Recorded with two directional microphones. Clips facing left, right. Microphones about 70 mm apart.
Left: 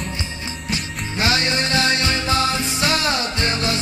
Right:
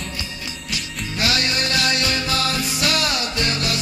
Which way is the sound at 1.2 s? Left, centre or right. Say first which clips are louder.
Left 2 dB; left.